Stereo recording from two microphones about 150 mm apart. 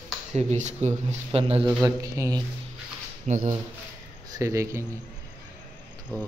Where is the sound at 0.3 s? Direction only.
50° right (ahead or behind).